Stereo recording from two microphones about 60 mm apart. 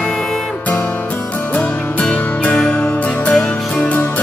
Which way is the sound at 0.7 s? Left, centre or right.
Left.